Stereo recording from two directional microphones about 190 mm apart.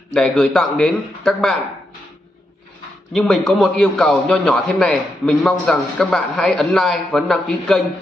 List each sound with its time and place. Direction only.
0.1 s a man's voice: centre (ahead or behind)
3.1 s a man's voice: centre (ahead or behind)